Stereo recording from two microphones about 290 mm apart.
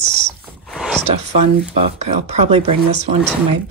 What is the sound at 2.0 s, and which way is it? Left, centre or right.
Speech, right.